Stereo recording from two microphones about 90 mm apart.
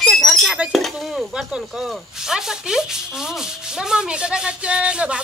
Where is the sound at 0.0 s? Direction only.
5° left (ahead or behind).